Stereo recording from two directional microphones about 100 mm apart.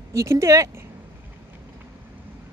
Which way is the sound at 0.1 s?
30° right (ahead or behind).